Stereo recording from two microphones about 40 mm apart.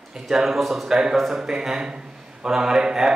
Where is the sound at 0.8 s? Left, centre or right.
Centre.